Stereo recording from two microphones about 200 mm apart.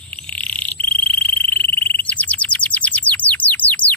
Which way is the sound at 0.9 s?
10° left (ahead or behind).